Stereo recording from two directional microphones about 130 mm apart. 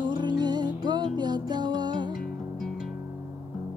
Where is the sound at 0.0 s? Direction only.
35° right (ahead or behind).